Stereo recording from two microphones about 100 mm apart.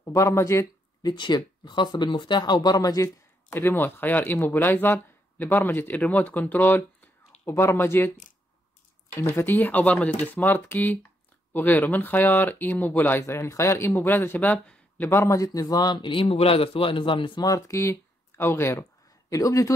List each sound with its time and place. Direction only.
0.0 s speech: 30° left (ahead or behind)
1.0 s speech: 50° left (ahead or behind)
3.5 s speech: 20° left (ahead or behind)
9.1 s speech: 25° left (ahead or behind); by 17.5 s 55° left (ahead or behind)
17.5 s speech: 30° left (ahead or behind)